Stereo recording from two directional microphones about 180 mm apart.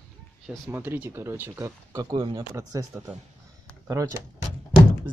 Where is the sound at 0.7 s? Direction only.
10° right (ahead or behind).